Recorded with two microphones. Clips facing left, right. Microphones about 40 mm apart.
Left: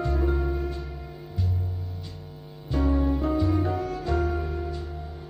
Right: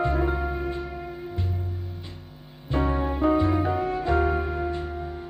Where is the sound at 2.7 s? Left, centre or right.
Right.